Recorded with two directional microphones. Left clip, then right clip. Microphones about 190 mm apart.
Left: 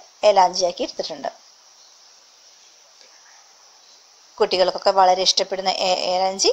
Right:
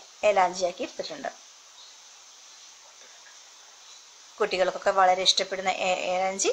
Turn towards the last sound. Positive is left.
turn(degrees=25)  # may be behind; listen again after turning